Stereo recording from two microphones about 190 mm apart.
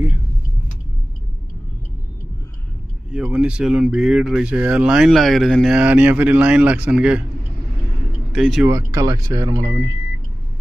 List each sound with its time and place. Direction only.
3.1 s speech: 5° right (ahead or behind)
8.3 s speech: centre (ahead or behind)
8.6 s speech: 15° right (ahead or behind)